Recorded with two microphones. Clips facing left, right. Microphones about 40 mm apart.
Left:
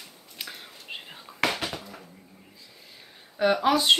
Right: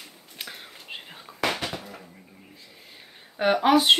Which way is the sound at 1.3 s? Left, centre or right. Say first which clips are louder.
Right 1 dB; centre.